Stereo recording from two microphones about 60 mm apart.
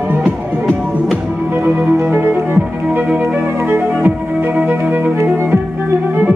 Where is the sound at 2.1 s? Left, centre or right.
Right.